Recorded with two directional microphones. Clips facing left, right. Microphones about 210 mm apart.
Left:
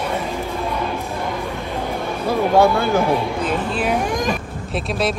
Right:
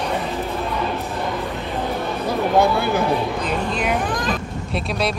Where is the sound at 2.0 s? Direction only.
15° left (ahead or behind).